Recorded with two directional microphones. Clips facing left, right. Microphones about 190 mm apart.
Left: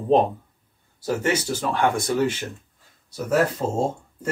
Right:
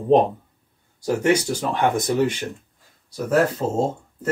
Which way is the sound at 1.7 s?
20° right (ahead or behind).